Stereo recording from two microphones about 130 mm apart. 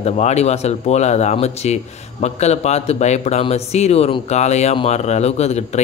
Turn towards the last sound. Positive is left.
turn(degrees=55)  # may be behind; listen again after turning